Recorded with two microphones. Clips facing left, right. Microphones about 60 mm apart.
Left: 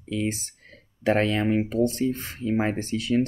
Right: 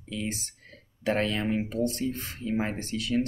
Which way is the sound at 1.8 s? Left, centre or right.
Left.